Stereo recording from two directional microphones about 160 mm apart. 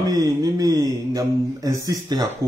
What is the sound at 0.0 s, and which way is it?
A man's voice, 25° right (ahead or behind).